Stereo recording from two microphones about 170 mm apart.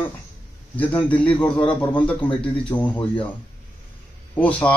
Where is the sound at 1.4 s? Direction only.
30° left (ahead or behind).